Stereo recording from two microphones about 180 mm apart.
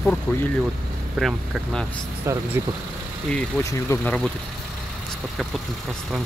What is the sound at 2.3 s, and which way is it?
Speech, 15° right (ahead or behind).